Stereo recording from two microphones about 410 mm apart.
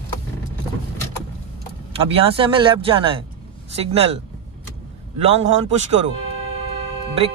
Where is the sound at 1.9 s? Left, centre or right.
Centre.